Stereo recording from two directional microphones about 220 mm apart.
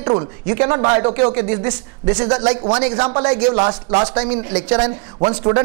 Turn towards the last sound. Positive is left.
turn(degrees=-20)  # may be behind; listen again after turning